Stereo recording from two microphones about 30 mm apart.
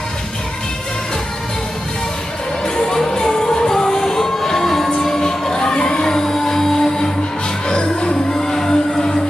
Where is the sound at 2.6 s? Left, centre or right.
Left.